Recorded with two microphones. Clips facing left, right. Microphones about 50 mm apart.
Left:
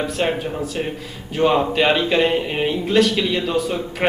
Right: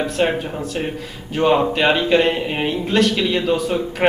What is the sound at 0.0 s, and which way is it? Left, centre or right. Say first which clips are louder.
A man's voice: right 2 dB; centre.